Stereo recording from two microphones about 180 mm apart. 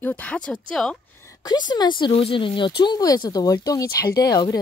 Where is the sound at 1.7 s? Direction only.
25° left (ahead or behind).